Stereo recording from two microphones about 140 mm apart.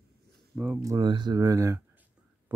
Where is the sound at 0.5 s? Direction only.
Centre (ahead or behind).